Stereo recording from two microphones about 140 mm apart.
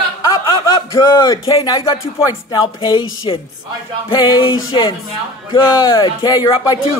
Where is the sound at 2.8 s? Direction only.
30° left (ahead or behind).